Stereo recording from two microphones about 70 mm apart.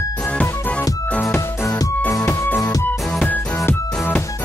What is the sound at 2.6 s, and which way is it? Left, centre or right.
Music, left.